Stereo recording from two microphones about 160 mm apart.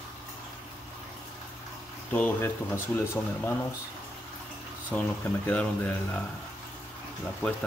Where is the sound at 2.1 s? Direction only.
10° left (ahead or behind).